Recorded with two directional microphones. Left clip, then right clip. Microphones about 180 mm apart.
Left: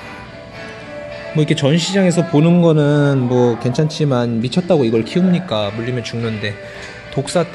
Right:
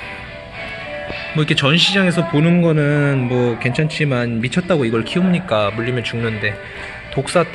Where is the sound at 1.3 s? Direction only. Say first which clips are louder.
Even; 20° left (ahead or behind).